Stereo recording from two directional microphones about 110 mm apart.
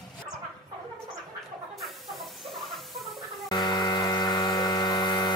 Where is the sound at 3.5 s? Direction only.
40° left (ahead or behind).